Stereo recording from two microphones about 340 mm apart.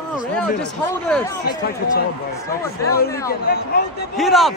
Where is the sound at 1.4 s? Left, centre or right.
Left.